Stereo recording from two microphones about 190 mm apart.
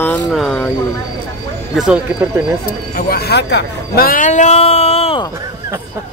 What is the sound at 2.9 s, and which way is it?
A man's voice, 50° left (ahead or behind).